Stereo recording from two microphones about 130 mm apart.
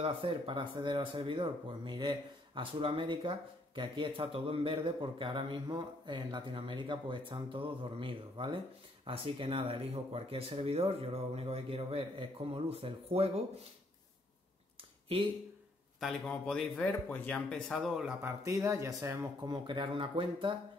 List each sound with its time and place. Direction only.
0.0 s speech: 45° right (ahead or behind)
16.0 s speech: 5° left (ahead or behind)
18.2 s speech: 25° right (ahead or behind); by 20.5 s 40° right (ahead or behind)